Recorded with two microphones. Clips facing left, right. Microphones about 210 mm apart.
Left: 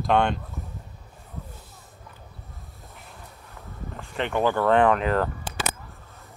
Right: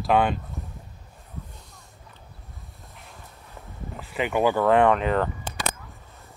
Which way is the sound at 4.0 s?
5° right (ahead or behind).